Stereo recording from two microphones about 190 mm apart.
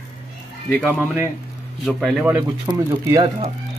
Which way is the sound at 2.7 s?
20° right (ahead or behind).